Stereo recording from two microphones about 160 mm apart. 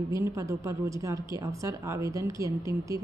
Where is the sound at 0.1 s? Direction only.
20° right (ahead or behind).